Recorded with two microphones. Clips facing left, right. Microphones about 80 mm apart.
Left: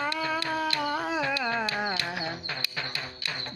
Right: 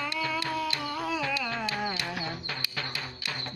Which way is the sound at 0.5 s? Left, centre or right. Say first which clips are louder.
Left 3 dB; left.